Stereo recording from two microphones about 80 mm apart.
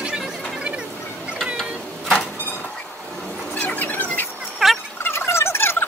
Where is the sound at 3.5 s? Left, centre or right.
Left.